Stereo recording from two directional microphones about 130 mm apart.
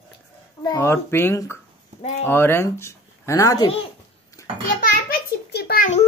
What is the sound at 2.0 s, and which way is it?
Speech, 55° left (ahead or behind).